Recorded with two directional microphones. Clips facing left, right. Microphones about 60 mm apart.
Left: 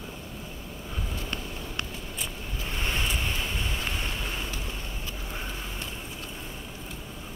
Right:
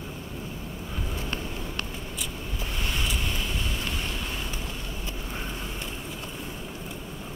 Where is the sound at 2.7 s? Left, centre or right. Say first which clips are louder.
Left 1 dB; left.